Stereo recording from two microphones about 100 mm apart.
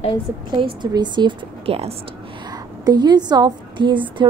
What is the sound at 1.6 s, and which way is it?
Speech, 80° right.